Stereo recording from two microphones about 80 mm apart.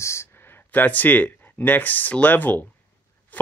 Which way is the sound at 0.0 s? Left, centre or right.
Left.